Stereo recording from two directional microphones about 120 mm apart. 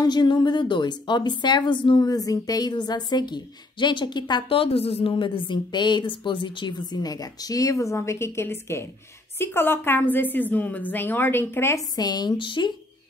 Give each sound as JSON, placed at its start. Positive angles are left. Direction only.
{"t": 0.0, "sound": "a woman's voice", "side_deg": 35}
{"t": 12.0, "sound": "a woman's voice", "side_deg": 35}